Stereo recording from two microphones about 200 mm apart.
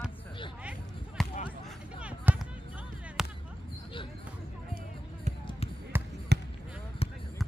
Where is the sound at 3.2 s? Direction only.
Centre (ahead or behind).